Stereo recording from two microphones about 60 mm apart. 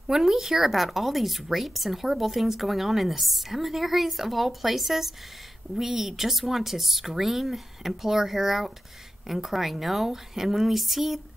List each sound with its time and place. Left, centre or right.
0.0 s speech: centre